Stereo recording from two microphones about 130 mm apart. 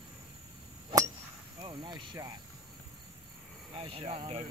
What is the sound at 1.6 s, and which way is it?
Speech, 35° right (ahead or behind).